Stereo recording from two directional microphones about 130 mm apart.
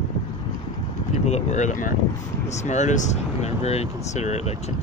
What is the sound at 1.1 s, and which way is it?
Speech, 65° left (ahead or behind).